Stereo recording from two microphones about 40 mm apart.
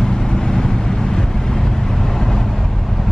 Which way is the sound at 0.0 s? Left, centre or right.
Centre.